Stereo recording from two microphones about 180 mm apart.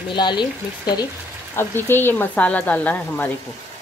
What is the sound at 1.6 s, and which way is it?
Speech, 10° left (ahead or behind).